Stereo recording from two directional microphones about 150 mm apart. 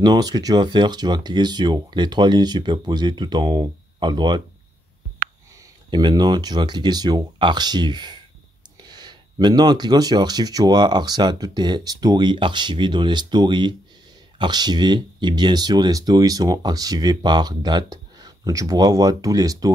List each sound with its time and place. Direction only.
0.0 s speech: 25° right (ahead or behind)
5.6 s speech: 30° right (ahead or behind)